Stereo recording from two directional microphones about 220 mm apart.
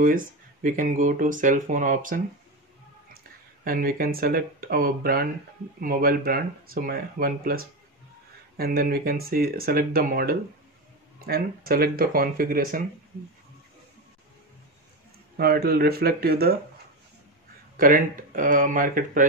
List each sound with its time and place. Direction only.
0.0 s speech: 40° right (ahead or behind)
3.6 s speech: 40° right (ahead or behind)
15.3 s speech: 45° right (ahead or behind)
17.7 s speech: 40° right (ahead or behind)